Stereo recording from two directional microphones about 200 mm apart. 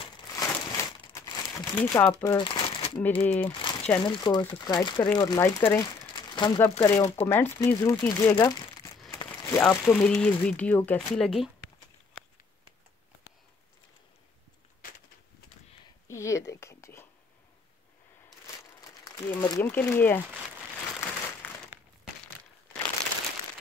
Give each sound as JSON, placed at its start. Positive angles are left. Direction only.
{"t": 0.0, "sound": "crumpling", "side_deg": 15}
{"t": 2.3, "sound": "crumpling", "side_deg": 25}
{"t": 3.2, "sound": "speech", "side_deg": 10}
{"t": 3.4, "sound": "crumpling", "side_deg": 30}
{"t": 4.0, "sound": "speech", "side_deg": 20}
{"t": 5.7, "sound": "crumpling", "side_deg": 15}
{"t": 6.7, "sound": "speech", "side_deg": 25}
{"t": 9.1, "sound": "crumpling", "side_deg": 15}
{"t": 9.8, "sound": "speech", "side_deg": 5}
{"t": 16.1, "sound": "a sound", "side_deg": 15}
{"t": 19.0, "sound": "speech", "side_deg": 20}